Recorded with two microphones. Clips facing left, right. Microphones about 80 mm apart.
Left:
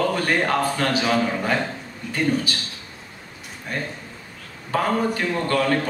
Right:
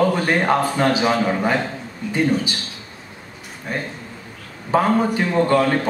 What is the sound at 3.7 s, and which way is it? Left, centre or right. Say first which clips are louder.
A man's voice: right 2 dB; centre.